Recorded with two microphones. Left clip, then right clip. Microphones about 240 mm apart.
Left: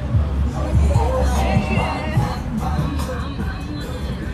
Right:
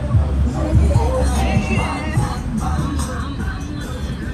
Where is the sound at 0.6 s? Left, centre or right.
Left.